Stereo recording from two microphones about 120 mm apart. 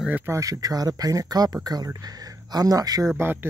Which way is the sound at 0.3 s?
30° right (ahead or behind).